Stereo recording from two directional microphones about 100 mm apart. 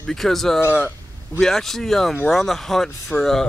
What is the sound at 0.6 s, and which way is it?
Speech, 20° left (ahead or behind).